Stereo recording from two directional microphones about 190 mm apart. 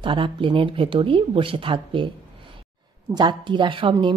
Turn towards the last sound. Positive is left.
turn(degrees=-25)  # may be behind; listen again after turning